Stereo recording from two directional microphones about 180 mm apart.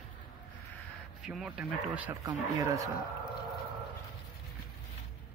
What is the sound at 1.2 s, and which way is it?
Speech, centre (ahead or behind).